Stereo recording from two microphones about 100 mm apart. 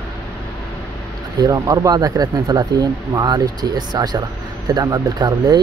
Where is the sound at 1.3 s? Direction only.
35° right (ahead or behind).